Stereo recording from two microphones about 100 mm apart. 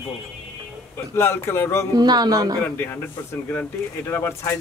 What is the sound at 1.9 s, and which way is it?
Speech, 40° right (ahead or behind).